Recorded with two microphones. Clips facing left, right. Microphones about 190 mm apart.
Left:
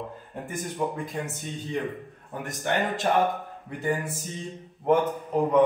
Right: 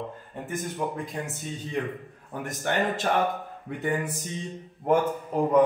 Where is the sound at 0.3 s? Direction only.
Centre (ahead or behind).